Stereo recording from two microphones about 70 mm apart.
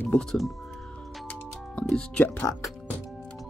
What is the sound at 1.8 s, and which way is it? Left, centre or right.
Speech, centre.